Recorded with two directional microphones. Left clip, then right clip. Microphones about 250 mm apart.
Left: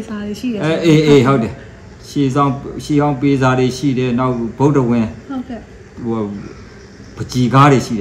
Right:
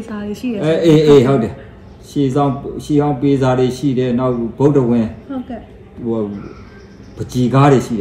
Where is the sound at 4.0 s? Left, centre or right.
Left.